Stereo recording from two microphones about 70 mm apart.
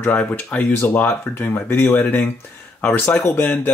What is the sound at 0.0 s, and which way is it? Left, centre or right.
Speech, left.